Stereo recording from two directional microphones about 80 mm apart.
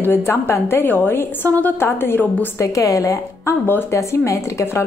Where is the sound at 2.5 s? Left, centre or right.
Left.